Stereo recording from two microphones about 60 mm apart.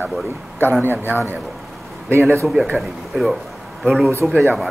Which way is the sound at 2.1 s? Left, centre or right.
Right.